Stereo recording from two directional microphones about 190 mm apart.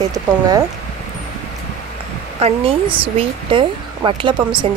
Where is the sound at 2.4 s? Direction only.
30° right (ahead or behind).